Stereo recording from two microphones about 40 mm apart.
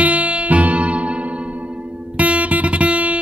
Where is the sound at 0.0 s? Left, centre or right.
Right.